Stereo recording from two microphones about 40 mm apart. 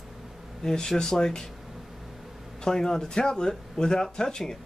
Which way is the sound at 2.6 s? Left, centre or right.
Centre.